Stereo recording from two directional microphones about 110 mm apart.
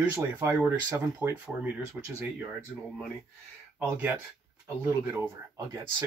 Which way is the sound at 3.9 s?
15° right (ahead or behind).